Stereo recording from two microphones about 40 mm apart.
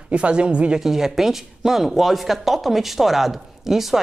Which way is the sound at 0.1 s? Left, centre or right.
Right.